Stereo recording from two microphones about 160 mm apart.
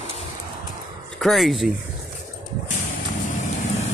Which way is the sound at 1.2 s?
Centre (ahead or behind).